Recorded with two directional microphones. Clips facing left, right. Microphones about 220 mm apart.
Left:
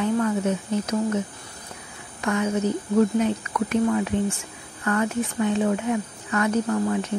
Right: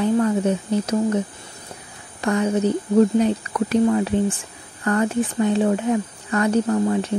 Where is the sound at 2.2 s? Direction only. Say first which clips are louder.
Right 4 dB; 35° right (ahead or behind).